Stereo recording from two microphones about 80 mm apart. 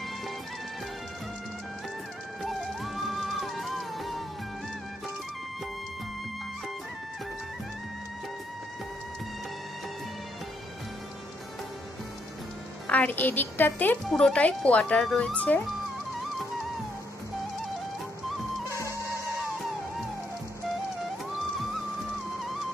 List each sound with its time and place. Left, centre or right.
2.4 s music: centre
12.8 s a woman's voice: centre
14.0 s speech: centre